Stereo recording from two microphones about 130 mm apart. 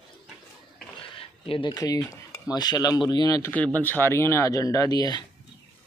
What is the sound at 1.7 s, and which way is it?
Speech, 30° left (ahead or behind).